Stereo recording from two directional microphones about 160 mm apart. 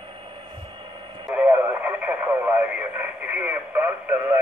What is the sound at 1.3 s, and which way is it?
Radio, 10° right (ahead or behind).